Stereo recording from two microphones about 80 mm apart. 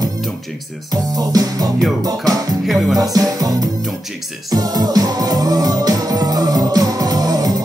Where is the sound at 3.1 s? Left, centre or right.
Right.